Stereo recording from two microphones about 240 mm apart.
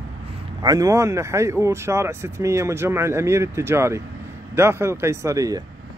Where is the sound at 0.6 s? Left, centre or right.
Centre.